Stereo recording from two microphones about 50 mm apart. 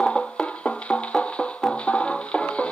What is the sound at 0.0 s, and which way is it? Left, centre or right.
Music, centre.